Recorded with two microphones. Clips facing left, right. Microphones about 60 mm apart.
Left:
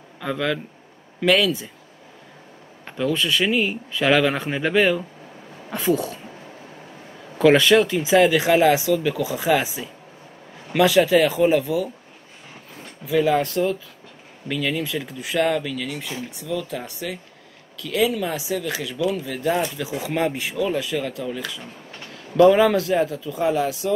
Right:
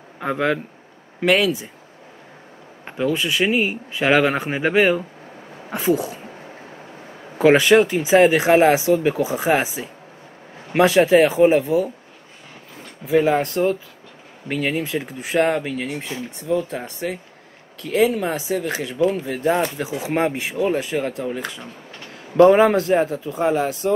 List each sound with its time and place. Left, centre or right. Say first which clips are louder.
0.2 s speech: right 3 dB; right
2.8 s speech: right 1 dB; right
5.7 s a sound: right 2 dB; centre
7.2 s speech: right 1 dB; right
13.0 s speech: right 2 dB; right